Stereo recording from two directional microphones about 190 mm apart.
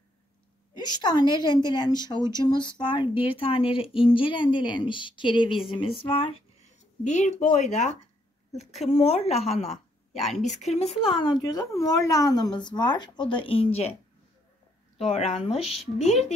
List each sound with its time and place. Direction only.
0.7 s a woman's voice: 20° left (ahead or behind)
7.1 s speech: 40° left (ahead or behind)
9.6 s speech: centre (ahead or behind)
10.4 s a woman's voice: 35° left (ahead or behind)
15.0 s speech: 35° left (ahead or behind)